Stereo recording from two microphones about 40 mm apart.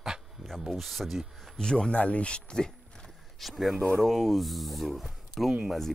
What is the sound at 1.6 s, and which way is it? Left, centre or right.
Speech, centre.